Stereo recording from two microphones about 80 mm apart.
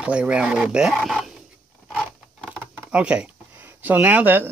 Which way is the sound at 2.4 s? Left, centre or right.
Centre.